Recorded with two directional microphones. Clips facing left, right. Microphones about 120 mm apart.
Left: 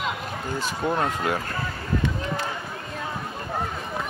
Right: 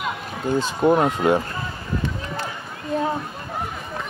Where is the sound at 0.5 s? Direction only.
20° right (ahead or behind).